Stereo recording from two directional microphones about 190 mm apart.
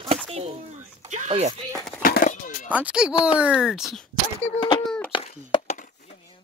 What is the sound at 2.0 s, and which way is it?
Music, 45° left (ahead or behind).